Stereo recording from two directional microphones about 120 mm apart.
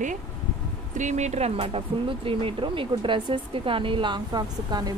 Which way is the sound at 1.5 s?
50° right (ahead or behind).